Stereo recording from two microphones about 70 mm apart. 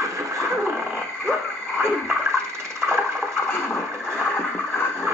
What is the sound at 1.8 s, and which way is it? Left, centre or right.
Toilet flush, right.